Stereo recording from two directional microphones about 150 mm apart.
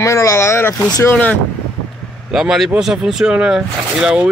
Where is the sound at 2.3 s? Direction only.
5° right (ahead or behind).